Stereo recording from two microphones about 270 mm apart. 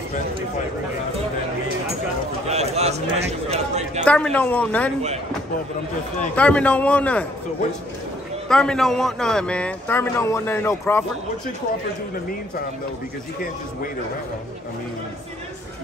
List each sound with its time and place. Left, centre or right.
2.5 s a man's voice: right
4.0 s a man's voice: centre
6.3 s a man's voice: centre
8.5 s a man's voice: centre